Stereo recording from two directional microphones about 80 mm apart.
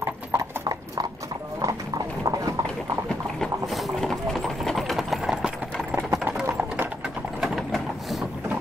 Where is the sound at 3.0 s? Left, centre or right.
Centre.